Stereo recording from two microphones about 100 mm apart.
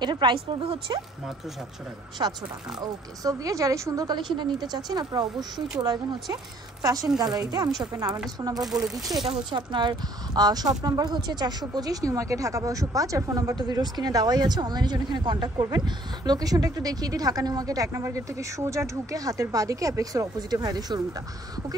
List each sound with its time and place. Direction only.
0.0 s a woman's voice: 50° right (ahead or behind)
2.2 s speech: 40° right (ahead or behind)
6.8 s a woman's voice: 35° right (ahead or behind)
8.6 s speech: 5° right (ahead or behind)
9.4 s speech: 50° right (ahead or behind)